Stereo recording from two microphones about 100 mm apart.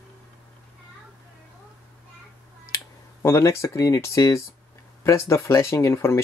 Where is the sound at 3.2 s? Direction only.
30° left (ahead or behind).